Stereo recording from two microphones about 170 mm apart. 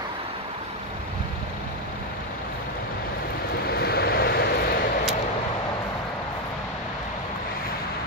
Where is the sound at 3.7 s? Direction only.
70° left (ahead or behind).